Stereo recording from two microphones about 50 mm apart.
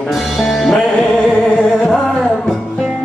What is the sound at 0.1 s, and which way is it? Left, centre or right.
Music, centre.